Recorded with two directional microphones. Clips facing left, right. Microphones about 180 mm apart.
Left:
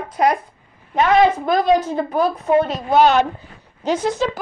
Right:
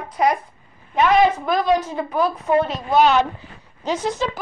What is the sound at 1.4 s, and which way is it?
A woman's voice, 30° left (ahead or behind).